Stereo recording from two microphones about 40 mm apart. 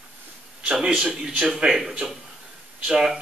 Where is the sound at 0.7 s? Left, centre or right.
Centre.